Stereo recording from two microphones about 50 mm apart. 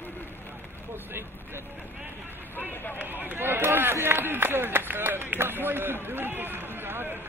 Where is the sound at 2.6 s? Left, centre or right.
Left.